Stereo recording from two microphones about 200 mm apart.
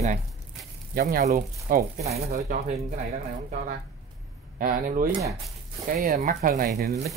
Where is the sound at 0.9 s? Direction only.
45° right (ahead or behind).